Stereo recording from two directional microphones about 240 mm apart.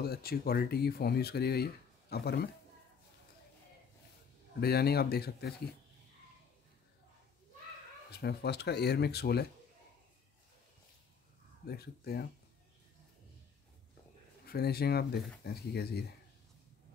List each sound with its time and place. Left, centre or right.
0.0 s speech: left
4.6 s speech: left
8.1 s speech: left
11.6 s speech: left
14.4 s speech: left